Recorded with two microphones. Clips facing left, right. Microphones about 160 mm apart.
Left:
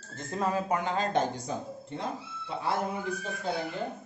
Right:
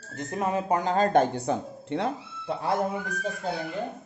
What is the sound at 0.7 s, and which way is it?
Speech, 40° right (ahead or behind).